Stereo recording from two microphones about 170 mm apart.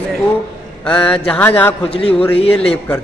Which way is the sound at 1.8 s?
35° left (ahead or behind).